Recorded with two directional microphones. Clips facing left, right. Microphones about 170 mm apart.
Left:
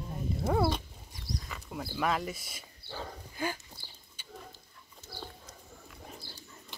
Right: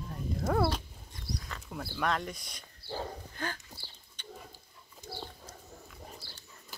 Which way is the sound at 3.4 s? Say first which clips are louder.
Left 6 dB; 10° left (ahead or behind).